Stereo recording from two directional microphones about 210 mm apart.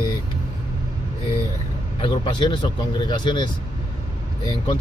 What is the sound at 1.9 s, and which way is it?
Speech, 25° left (ahead or behind).